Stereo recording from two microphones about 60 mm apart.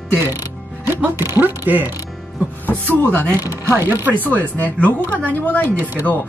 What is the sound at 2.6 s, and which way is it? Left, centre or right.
Speech, left.